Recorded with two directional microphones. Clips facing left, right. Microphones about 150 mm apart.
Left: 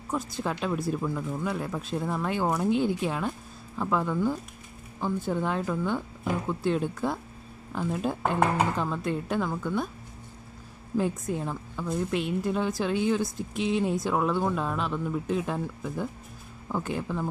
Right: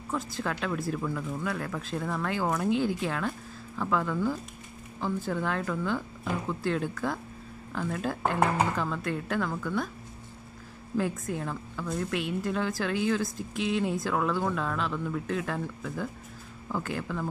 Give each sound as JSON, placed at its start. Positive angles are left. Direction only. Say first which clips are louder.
{"t": 0.1, "sound": "speech", "louder": "left 2 dB", "side_deg": 20}
{"t": 11.0, "sound": "speech", "louder": "left 2 dB", "side_deg": 20}